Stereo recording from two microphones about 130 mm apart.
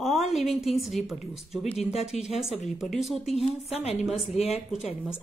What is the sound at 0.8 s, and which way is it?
Speech, centre (ahead or behind).